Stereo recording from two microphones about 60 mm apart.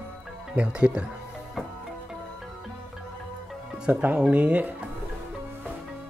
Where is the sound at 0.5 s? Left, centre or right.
Centre.